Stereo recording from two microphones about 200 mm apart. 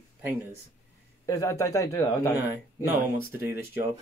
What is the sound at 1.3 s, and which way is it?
A man's voice, 15° left (ahead or behind).